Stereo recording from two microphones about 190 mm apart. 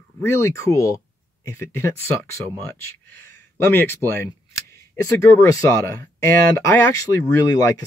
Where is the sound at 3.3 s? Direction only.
10° left (ahead or behind).